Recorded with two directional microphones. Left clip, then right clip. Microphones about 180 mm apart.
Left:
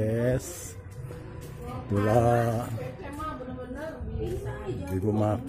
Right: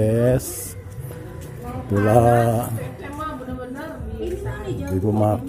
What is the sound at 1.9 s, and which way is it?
Speech, 5° right (ahead or behind).